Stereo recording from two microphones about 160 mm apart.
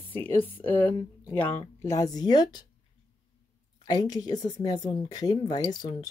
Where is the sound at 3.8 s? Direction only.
25° left (ahead or behind).